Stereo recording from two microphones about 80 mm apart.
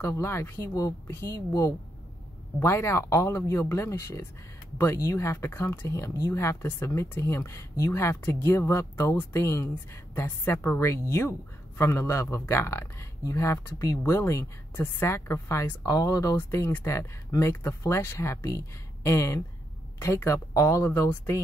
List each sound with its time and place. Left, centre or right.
0.0 s speech: left
2.6 s speech: left
16.3 s speech: left
20.5 s speech: left